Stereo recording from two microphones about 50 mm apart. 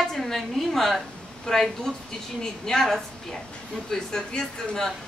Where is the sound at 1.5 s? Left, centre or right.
Centre.